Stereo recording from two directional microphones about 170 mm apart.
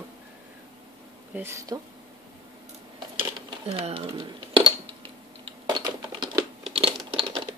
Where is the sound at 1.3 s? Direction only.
15° right (ahead or behind).